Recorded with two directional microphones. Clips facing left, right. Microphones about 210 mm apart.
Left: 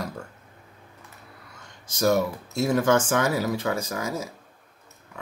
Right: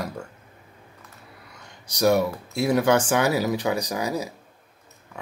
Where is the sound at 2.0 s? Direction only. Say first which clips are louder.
Right 2 dB; 15° right (ahead or behind).